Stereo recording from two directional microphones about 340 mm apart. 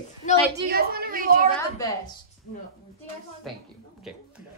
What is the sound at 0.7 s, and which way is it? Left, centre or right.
Speech, right.